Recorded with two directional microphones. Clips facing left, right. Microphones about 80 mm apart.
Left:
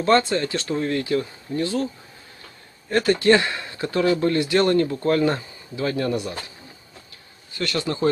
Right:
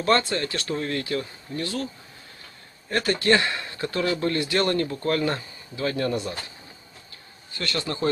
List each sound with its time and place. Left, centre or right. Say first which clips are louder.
0.0 s speech: left 4 dB; centre
2.9 s speech: left 4 dB; centre
7.5 s speech: left 4 dB; centre